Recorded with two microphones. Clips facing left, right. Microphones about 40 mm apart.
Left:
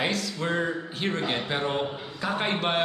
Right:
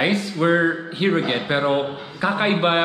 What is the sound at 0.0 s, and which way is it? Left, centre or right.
Speech, right.